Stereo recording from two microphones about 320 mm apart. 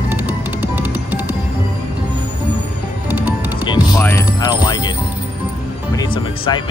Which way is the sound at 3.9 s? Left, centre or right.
Centre.